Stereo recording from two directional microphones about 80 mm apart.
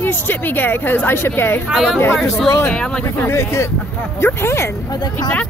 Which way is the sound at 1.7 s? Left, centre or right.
Centre.